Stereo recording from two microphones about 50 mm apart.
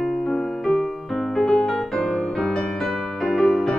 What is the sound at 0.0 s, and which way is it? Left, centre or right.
Music, centre.